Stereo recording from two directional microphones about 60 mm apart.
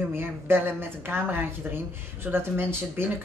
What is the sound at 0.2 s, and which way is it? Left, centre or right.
Speech, right.